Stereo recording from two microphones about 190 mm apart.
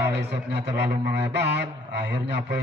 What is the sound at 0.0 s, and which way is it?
A man's voice, 60° right (ahead or behind).